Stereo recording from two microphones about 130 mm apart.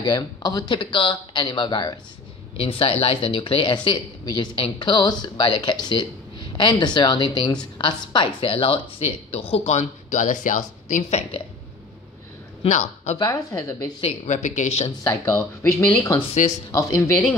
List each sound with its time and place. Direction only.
0.0 s a woman's voice: 35° left (ahead or behind); by 11.4 s 55° left (ahead or behind)
12.6 s speech: 65° left (ahead or behind)
13.2 s speech: 25° left (ahead or behind)
14.2 s speech: 65° left (ahead or behind)
15.0 s speech: 20° left (ahead or behind)
16.4 s speech: 75° left (ahead or behind)
16.7 s speech: 25° left (ahead or behind)